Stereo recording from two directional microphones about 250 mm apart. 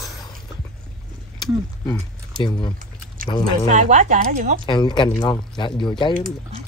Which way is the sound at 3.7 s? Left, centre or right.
Right.